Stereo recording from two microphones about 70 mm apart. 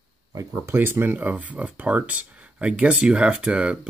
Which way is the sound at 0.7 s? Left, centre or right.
Right.